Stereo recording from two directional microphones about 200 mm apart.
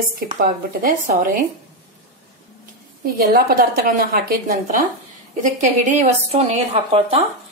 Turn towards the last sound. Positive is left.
turn(degrees=-30)  # may be behind; listen again after turning